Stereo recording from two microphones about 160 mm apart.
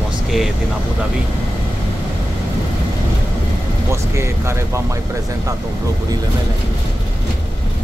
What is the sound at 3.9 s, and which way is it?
Speech, 15° right (ahead or behind).